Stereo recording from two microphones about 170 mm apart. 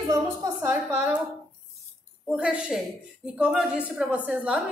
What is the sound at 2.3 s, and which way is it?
A woman's voice, 5° right (ahead or behind).